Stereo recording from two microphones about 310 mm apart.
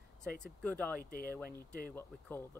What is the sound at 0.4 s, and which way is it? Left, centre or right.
Speech, centre.